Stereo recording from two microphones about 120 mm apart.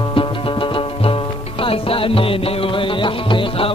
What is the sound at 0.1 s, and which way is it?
Music, 45° left (ahead or behind).